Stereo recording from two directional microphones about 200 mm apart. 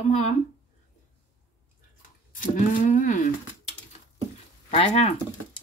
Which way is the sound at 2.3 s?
40° left (ahead or behind).